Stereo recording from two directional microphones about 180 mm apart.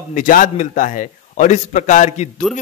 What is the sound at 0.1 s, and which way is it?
A man's voice, 45° left (ahead or behind).